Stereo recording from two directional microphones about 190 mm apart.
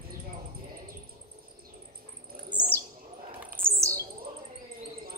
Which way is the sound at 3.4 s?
10° right (ahead or behind).